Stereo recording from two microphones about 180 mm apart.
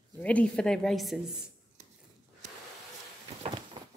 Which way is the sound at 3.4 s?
25° right (ahead or behind).